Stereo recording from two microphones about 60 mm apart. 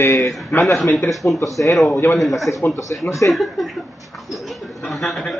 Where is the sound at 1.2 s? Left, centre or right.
Left.